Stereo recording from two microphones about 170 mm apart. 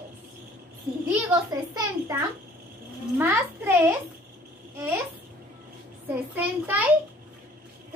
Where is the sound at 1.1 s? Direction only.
20° right (ahead or behind).